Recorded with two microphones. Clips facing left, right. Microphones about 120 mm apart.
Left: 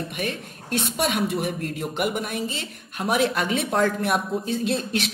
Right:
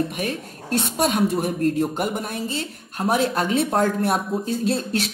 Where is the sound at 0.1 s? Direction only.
45° right (ahead or behind).